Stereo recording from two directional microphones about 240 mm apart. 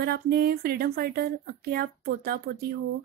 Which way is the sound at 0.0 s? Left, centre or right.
Right.